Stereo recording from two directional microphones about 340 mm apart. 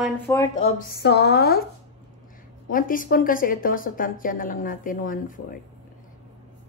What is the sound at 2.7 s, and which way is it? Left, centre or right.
A woman's voice, left.